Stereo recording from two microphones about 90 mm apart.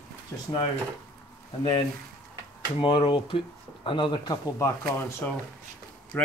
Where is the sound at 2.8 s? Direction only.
75° left (ahead or behind); by 4.4 s 55° left (ahead or behind).